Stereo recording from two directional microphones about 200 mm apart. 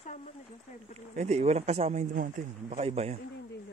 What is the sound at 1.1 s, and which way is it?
Speech, 35° right (ahead or behind).